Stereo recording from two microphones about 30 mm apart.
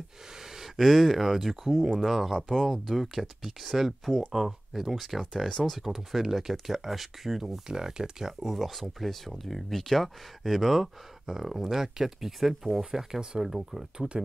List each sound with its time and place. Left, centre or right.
0.7 s speech: centre
7.6 s speech: right
8.5 s speech: centre
10.4 s speech: centre
12.9 s speech: right
13.4 s speech: centre
13.9 s speech: right